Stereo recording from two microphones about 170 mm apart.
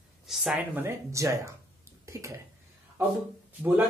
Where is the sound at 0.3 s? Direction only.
Centre (ahead or behind); by 2.4 s 15° right (ahead or behind).